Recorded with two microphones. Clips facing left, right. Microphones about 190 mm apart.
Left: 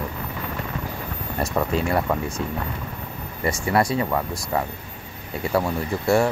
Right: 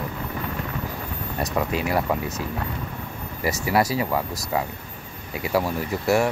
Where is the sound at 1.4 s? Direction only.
30° left (ahead or behind).